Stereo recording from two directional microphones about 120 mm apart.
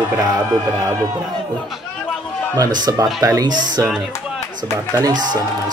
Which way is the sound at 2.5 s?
35° right (ahead or behind).